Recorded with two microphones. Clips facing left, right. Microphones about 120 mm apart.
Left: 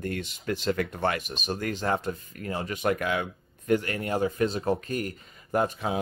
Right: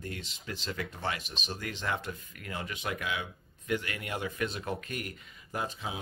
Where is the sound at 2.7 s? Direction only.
50° left (ahead or behind).